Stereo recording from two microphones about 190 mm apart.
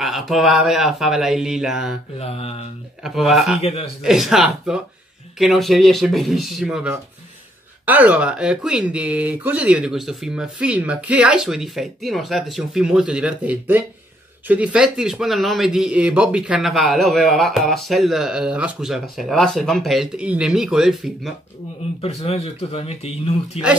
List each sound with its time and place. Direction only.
0.0 s speech: centre (ahead or behind)
2.1 s speech: 30° left (ahead or behind)
3.0 s speech: centre (ahead or behind)
3.6 s speech: 30° left (ahead or behind)
4.0 s speech: centre (ahead or behind)
22.0 s speech: 30° left (ahead or behind)